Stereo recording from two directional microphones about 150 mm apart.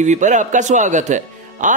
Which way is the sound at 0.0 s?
55° right (ahead or behind).